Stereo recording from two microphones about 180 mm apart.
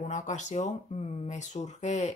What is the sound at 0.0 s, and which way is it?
Speech, 40° left (ahead or behind).